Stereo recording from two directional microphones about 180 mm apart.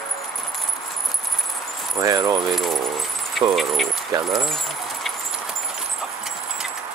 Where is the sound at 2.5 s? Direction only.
Centre (ahead or behind).